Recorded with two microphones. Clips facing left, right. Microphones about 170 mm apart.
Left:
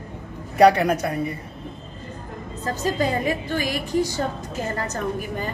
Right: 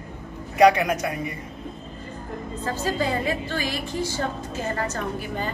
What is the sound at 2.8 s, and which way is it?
A woman's voice, 15° left (ahead or behind).